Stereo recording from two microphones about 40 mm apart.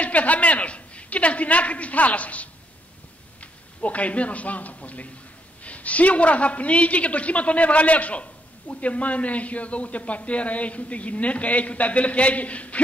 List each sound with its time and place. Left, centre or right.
0.0 s a man's voice: left